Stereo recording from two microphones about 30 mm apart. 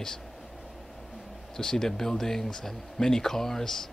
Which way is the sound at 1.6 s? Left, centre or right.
Centre.